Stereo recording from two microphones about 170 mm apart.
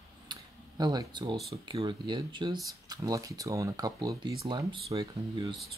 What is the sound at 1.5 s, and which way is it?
Speech, 30° right (ahead or behind).